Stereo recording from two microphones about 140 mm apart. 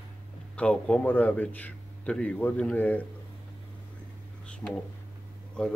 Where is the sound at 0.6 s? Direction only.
10° left (ahead or behind).